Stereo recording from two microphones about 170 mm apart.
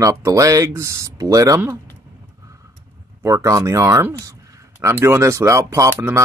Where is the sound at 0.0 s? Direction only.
20° right (ahead or behind).